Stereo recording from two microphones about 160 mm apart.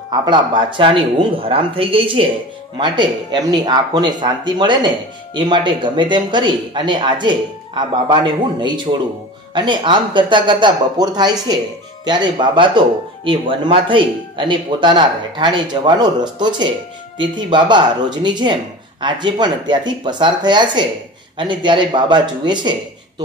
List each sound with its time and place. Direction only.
0.2 s speech: 30° right (ahead or behind)